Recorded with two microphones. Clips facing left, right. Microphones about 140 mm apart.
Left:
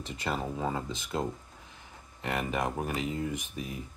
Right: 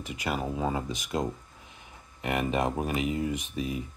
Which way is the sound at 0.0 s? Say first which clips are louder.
Right 2 dB; 10° right (ahead or behind).